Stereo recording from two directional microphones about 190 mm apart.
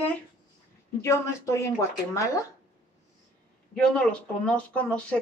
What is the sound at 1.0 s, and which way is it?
Speech, 15° left (ahead or behind).